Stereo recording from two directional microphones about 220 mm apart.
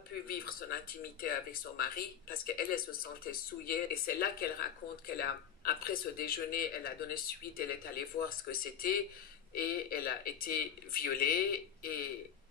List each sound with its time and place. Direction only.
0.3 s speech: 45° left (ahead or behind)